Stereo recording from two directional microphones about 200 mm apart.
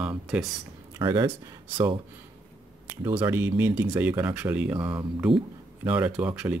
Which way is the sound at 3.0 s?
10° right (ahead or behind).